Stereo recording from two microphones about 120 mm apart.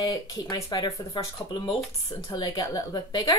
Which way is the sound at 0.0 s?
30° left (ahead or behind).